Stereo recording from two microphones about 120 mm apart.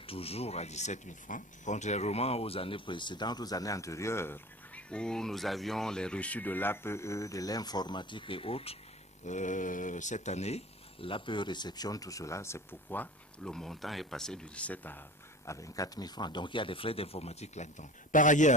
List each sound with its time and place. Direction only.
0.0 s speech: 55° left (ahead or behind)
9.2 s speech: 90° left; by 15.0 s 15° left (ahead or behind)
15.4 s speech: 25° left (ahead or behind); by 18.5 s 90° left